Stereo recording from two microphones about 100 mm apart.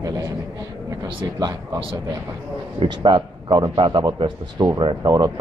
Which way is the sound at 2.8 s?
60° right (ahead or behind).